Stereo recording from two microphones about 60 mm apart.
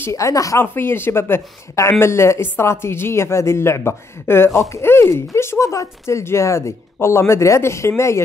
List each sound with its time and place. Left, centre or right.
0.1 s speech: left
0.6 s speech: left